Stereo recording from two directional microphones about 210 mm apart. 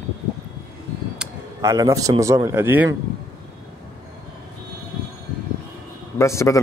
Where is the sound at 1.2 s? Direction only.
15° right (ahead or behind).